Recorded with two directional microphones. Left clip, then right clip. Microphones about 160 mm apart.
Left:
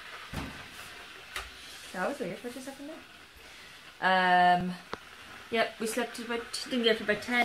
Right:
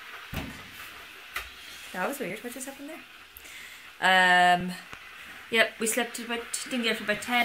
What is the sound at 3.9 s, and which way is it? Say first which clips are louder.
Speech: right 4 dB; 25° right (ahead or behind).